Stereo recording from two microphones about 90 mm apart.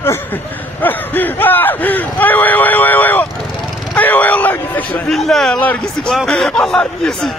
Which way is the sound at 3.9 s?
15° left (ahead or behind).